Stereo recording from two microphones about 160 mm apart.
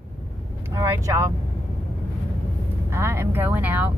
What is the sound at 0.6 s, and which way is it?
Speech, 15° right (ahead or behind).